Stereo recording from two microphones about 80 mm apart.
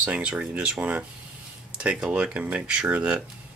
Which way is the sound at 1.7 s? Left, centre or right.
Centre.